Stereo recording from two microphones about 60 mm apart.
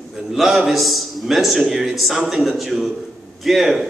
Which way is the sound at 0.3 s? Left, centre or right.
Centre.